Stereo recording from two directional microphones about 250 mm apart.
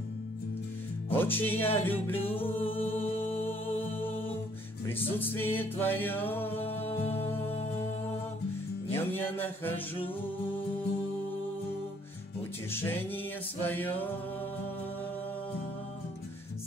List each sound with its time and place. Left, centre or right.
1.1 s music: centre
2.6 s music: left
4.8 s music: centre
8.9 s music: centre
12.7 s music: centre